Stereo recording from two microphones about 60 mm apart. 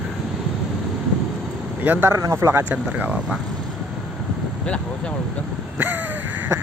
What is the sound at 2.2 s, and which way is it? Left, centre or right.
Speech, right.